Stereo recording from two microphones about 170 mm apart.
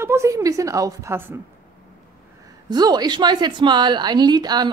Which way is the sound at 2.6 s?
25° right (ahead or behind).